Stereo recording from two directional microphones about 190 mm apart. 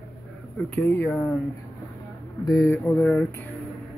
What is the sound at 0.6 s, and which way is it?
Speech, 10° left (ahead or behind).